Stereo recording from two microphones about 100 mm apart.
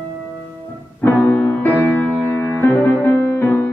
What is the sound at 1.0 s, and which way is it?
Music, 20° left (ahead or behind).